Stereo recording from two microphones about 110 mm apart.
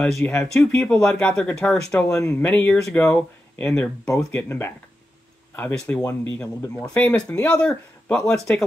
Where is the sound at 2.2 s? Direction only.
15° left (ahead or behind).